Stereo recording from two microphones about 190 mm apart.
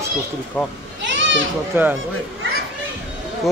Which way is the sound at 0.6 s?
Centre (ahead or behind).